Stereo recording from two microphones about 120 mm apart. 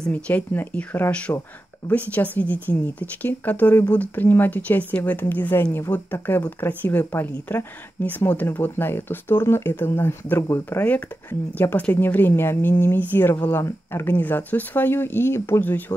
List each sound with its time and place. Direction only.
0.1 s speech: 15° left (ahead or behind)